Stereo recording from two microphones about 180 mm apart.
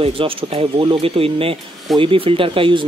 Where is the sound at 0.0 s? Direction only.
30° right (ahead or behind).